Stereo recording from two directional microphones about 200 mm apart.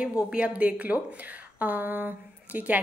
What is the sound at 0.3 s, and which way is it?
A woman's voice, 5° right (ahead or behind).